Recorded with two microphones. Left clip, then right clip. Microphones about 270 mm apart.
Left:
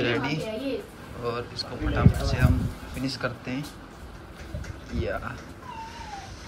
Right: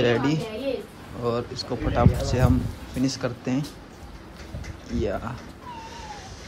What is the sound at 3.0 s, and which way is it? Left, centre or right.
Speech, centre.